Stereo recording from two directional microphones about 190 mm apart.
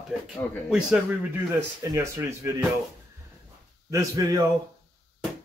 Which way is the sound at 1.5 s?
15° right (ahead or behind).